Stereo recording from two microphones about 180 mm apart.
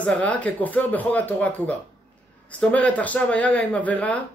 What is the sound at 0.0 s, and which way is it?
A man's voice, 10° left (ahead or behind).